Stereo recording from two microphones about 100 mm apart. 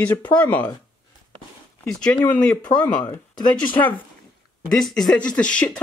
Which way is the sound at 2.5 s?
45° left (ahead or behind).